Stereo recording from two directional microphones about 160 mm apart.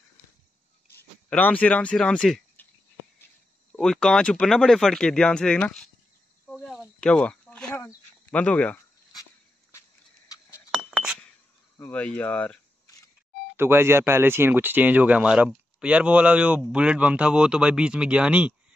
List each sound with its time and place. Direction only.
0.9 s speech: 10° left (ahead or behind)
3.7 s speech: 5° left (ahead or behind)
6.4 s a sound: centre (ahead or behind)
9.7 s a sound: 20° left (ahead or behind)
10.7 s chink: 5° right (ahead or behind)
11.7 s speech: 10° left (ahead or behind)
13.6 s speech: 15° right (ahead or behind)